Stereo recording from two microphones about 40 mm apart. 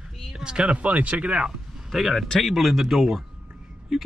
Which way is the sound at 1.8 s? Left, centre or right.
Centre.